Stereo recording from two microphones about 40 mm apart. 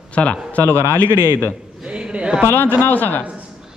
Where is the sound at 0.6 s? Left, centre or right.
Left.